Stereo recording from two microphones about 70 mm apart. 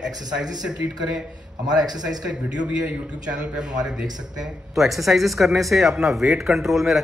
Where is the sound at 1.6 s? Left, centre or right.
Right.